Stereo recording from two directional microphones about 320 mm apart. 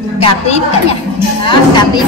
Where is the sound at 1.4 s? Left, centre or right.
Centre.